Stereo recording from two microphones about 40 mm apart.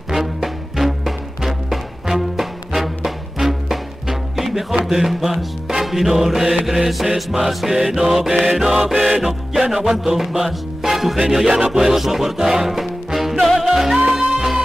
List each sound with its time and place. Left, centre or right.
0.1 s music: centre